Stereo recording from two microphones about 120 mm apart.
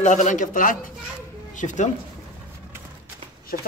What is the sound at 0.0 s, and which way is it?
Speech, 90° left.